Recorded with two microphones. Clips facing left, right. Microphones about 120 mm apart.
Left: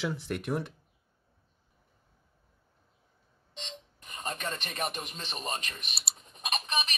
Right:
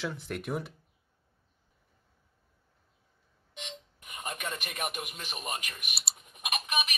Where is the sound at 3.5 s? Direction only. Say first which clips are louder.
Right 1 dB; 10° right (ahead or behind).